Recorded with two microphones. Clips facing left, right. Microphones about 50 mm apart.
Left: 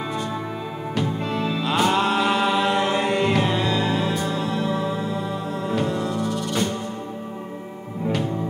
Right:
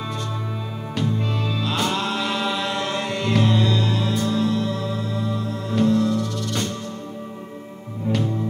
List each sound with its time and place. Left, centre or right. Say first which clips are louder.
0.9 s music: even; centre